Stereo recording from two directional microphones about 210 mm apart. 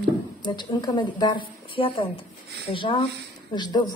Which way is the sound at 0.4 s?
20° left (ahead or behind).